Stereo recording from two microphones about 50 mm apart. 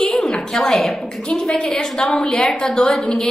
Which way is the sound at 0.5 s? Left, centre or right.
Centre.